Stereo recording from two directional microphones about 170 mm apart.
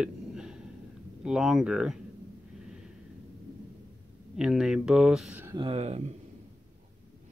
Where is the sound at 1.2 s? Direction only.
5° right (ahead or behind).